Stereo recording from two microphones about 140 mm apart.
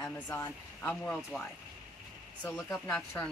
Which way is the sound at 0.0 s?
10° left (ahead or behind).